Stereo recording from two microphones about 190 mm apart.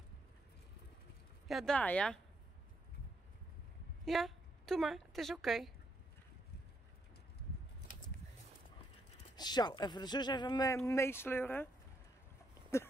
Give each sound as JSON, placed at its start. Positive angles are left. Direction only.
{"t": 1.5, "sound": "speech", "side_deg": 0}
{"t": 4.0, "sound": "a woman's voice", "side_deg": 0}
{"t": 9.3, "sound": "speech", "side_deg": 20}